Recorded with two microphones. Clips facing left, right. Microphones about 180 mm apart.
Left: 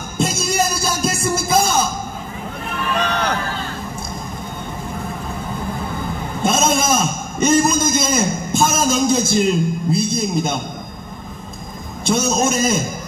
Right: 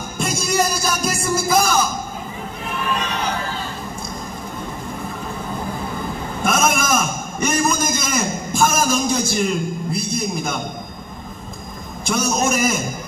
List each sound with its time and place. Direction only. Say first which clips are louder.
0.6 s music: even; 25° left (ahead or behind)
3.0 s a sound: left 4 dB; 65° left (ahead or behind)
6.4 s a man's voice: left 2 dB; 25° left (ahead or behind)
12.0 s a man's voice: left 3 dB; 25° left (ahead or behind)